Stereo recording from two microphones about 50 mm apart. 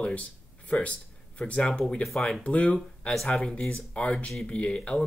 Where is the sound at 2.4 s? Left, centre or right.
Left.